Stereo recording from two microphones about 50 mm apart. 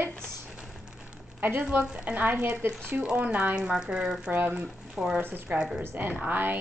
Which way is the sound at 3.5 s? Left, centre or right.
Centre.